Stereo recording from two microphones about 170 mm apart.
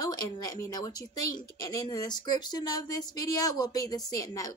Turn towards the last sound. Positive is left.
turn(degrees=20)  # may be behind; listen again after turning